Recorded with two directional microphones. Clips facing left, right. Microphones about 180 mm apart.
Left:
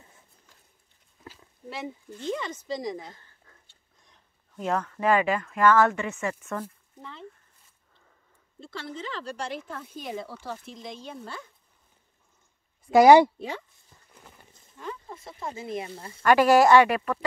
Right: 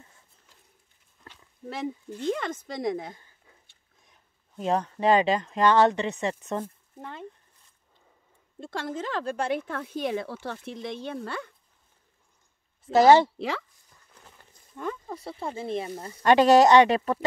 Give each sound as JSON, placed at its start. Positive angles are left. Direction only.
{"t": 1.7, "sound": "speech", "side_deg": -55}
{"t": 3.2, "sound": "a sound", "side_deg": -10}
{"t": 4.6, "sound": "speech", "side_deg": -20}
{"t": 7.0, "sound": "speech", "side_deg": -55}
{"t": 8.5, "sound": "speech", "side_deg": -45}
{"t": 12.9, "sound": "speech", "side_deg": 15}
{"t": 13.4, "sound": "speech", "side_deg": -90}
{"t": 14.8, "sound": "speech", "side_deg": -40}